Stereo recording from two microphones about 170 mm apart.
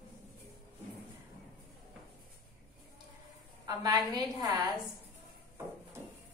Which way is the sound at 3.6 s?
25° right (ahead or behind).